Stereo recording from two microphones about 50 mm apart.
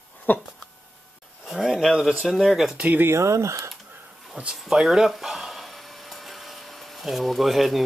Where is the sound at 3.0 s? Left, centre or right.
Right.